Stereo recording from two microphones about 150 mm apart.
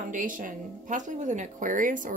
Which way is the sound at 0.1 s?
60° right (ahead or behind).